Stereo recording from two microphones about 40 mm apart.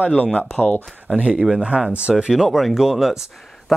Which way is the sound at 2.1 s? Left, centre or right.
Centre.